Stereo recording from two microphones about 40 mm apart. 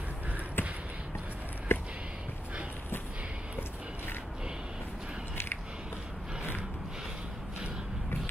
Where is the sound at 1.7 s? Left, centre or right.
Left.